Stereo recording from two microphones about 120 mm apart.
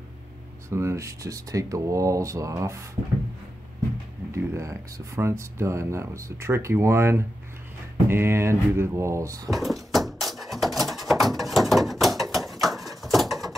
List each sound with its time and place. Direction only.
0.7 s speech: 25° right (ahead or behind)
4.3 s speech: 25° right (ahead or behind)
9.5 s a sound: centre (ahead or behind)